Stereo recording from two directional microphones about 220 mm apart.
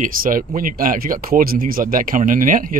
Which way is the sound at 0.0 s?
40° right (ahead or behind).